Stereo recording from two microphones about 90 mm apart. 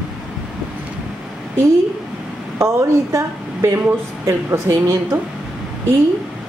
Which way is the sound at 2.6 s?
30° right (ahead or behind).